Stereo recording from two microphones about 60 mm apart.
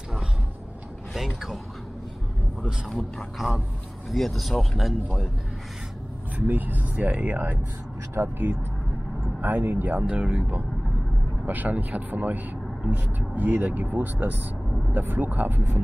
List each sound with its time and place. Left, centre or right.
1.1 s speech: centre
2.9 s speech: centre
6.3 s speech: right
10.1 s speech: centre
11.4 s speech: right